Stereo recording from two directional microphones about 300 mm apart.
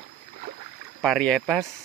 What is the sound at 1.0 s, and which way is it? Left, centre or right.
Speech, centre.